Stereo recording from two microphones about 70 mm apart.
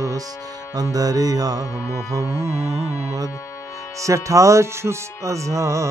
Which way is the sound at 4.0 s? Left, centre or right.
Right.